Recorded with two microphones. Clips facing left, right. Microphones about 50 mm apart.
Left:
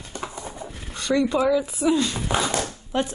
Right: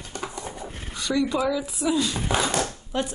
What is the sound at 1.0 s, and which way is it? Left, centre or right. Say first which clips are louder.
Speech: left 3 dB; left.